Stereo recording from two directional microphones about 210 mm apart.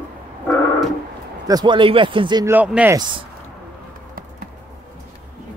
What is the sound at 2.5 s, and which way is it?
Speech, 5° right (ahead or behind).